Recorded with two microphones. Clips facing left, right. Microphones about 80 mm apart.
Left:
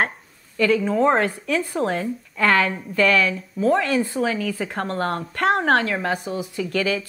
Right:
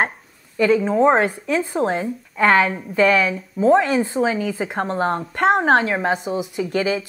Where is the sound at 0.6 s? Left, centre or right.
Right.